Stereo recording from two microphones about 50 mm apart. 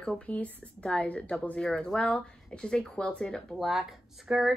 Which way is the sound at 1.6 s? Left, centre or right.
Centre.